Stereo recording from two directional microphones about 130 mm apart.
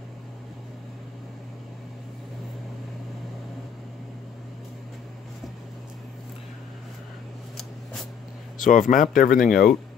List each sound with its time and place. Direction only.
8.5 s speech: 85° left